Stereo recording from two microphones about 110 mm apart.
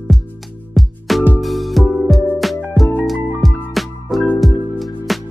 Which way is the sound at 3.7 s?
Centre (ahead or behind).